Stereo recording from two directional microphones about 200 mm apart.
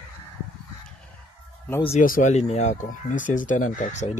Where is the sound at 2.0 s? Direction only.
40° left (ahead or behind).